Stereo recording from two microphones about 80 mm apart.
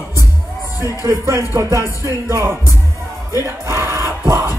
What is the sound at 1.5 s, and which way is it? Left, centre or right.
Speech, right.